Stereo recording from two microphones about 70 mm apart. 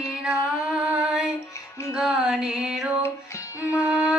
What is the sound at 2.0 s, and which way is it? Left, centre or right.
Music, centre.